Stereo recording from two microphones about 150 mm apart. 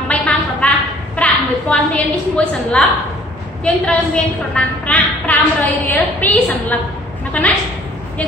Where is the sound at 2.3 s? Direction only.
5° left (ahead or behind).